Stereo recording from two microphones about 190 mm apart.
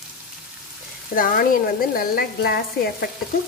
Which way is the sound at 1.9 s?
50° left (ahead or behind).